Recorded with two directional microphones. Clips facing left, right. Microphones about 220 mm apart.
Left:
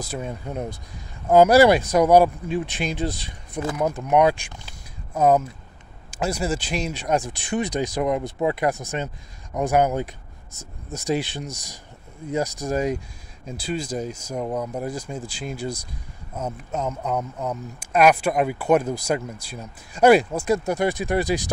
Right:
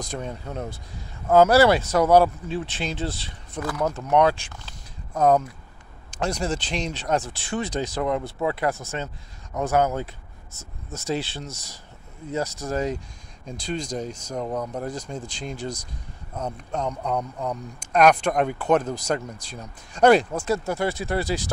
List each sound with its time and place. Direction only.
0.0 s speech: 5° left (ahead or behind)